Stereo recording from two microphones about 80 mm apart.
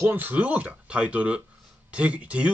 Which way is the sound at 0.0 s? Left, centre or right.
Right.